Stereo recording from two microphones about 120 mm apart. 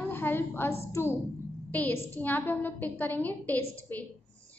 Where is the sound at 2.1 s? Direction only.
15° left (ahead or behind).